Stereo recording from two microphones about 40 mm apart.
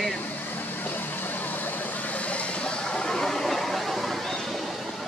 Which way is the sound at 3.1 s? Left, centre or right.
Centre.